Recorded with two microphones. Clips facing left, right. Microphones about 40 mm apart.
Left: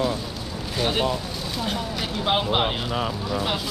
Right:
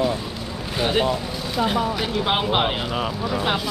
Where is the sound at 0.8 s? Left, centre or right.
Centre.